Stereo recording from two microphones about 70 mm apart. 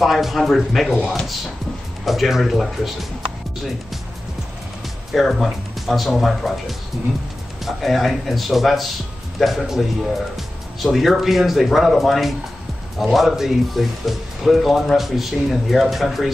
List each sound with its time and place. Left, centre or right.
0.0 s speech: centre
5.1 s speech: centre
7.6 s speech: centre